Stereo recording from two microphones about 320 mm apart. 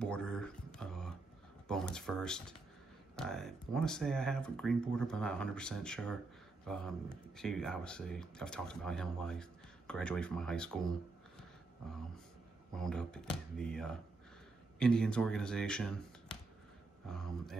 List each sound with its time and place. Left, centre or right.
0.0 s a sound: centre
1.7 s speech: centre
12.7 s speech: centre